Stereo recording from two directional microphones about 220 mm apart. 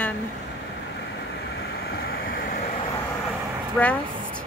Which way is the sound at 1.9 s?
45° left (ahead or behind).